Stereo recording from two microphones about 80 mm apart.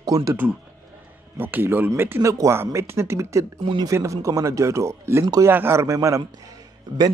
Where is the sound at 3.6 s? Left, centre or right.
Right.